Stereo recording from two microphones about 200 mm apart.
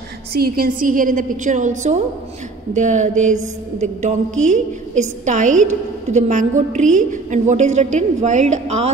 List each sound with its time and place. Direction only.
0.3 s a woman's voice: 45° right (ahead or behind)